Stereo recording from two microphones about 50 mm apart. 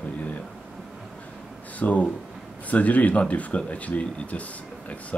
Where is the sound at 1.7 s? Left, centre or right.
Left.